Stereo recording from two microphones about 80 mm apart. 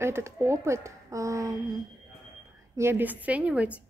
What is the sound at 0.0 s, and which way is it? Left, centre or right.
A woman's voice, right.